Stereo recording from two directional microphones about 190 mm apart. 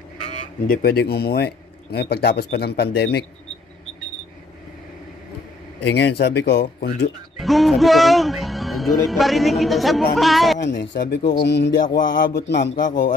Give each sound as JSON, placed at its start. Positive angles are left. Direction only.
{"t": 0.2, "sound": "speech", "side_deg": 45}
{"t": 5.8, "sound": "speech", "side_deg": 60}
{"t": 7.3, "sound": "speech", "side_deg": 0}
{"t": 10.6, "sound": "speech", "side_deg": 65}
{"t": 12.8, "sound": "speech", "side_deg": 45}